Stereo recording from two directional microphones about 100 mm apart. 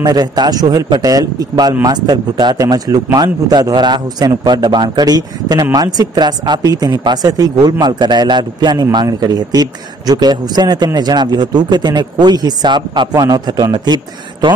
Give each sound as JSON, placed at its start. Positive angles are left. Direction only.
{"t": 0.0, "sound": "a man's voice", "side_deg": -40}